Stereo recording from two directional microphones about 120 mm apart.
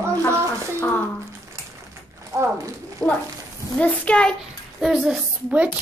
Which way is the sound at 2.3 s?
25° right (ahead or behind).